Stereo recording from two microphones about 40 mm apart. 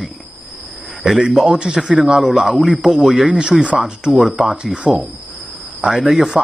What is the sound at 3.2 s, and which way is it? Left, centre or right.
Speech, right.